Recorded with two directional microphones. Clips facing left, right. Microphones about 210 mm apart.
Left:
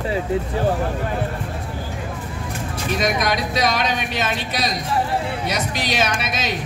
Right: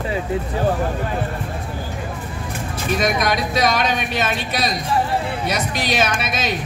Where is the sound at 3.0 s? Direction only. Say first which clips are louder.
Right 1 dB; 50° right (ahead or behind).